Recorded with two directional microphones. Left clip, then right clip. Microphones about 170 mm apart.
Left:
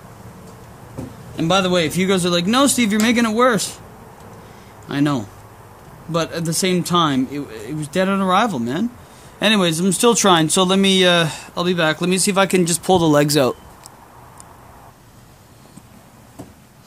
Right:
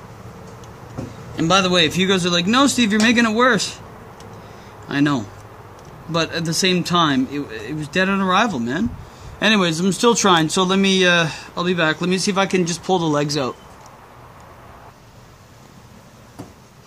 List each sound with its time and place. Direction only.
1.3 s speech: 30° left (ahead or behind)
4.8 s speech: 45° left (ahead or behind); by 13.6 s 60° left (ahead or behind)